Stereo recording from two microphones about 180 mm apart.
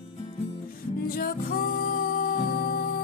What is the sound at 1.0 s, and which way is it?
Music, 55° left (ahead or behind).